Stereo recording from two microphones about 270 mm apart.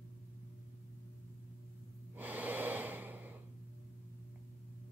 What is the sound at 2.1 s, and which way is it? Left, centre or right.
Gasp, centre.